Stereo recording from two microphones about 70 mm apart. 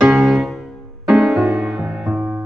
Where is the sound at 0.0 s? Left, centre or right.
Centre.